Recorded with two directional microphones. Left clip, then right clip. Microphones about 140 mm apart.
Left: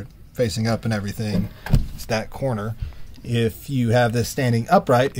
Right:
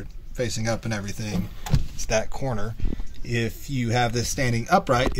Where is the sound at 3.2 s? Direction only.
45° left (ahead or behind).